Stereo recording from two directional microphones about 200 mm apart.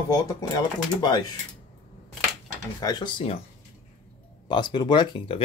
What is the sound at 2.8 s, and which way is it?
Speech, 20° left (ahead or behind).